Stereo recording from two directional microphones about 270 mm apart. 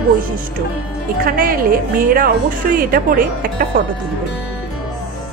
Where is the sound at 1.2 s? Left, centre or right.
Right.